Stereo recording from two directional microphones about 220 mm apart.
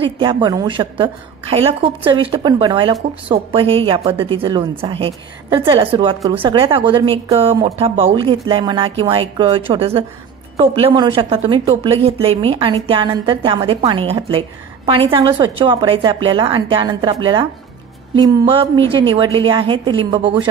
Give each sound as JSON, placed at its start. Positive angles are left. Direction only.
{"t": 0.0, "sound": "a woman's voice", "side_deg": -20}